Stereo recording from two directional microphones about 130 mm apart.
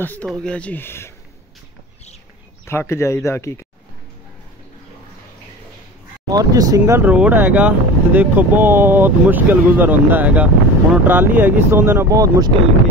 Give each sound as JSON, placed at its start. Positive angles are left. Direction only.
{"t": 0.0, "sound": "speech", "side_deg": 15}
{"t": 2.6, "sound": "speech", "side_deg": 20}
{"t": 6.3, "sound": "speech", "side_deg": -30}
{"t": 6.9, "sound": "speech", "side_deg": -10}